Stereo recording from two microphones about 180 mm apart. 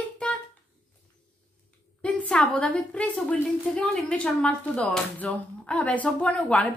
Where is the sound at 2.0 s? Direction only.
5° left (ahead or behind).